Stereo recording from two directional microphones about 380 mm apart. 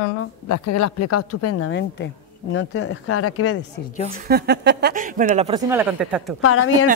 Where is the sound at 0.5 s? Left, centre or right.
Left.